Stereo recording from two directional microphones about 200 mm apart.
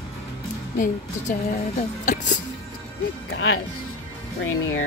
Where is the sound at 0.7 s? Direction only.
40° left (ahead or behind).